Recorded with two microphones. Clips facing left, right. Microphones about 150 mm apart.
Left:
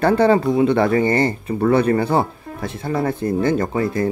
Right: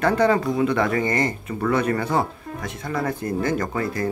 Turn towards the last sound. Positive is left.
turn(degrees=25)  # may be behind; listen again after turning